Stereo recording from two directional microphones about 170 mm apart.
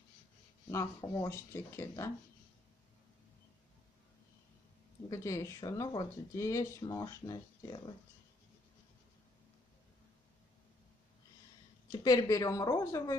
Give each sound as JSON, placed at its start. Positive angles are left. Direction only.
{"t": 0.7, "sound": "speech", "side_deg": 15}
{"t": 5.1, "sound": "speech", "side_deg": 15}
{"t": 12.0, "sound": "speech", "side_deg": 20}